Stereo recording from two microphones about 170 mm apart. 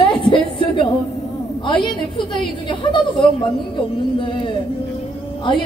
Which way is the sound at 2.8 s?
25° left (ahead or behind).